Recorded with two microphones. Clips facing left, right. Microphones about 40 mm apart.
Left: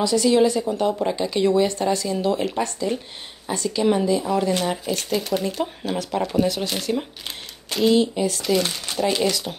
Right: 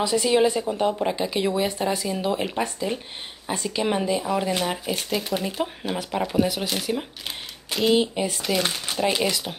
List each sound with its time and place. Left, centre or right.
0.0 s speech: right; by 7.9 s centre
7.9 s speech: right